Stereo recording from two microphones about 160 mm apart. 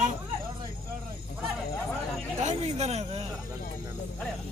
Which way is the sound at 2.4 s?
45° right (ahead or behind).